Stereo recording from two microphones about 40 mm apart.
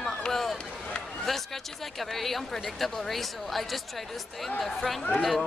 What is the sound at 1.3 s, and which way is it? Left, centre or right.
A woman's voice, centre.